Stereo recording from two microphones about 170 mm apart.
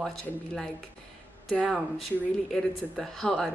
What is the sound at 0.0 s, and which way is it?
A man's voice, 5° left (ahead or behind).